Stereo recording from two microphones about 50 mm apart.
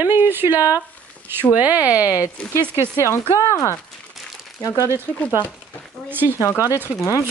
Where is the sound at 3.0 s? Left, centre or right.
Left.